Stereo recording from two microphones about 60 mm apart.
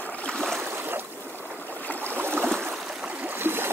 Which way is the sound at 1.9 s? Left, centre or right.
Left.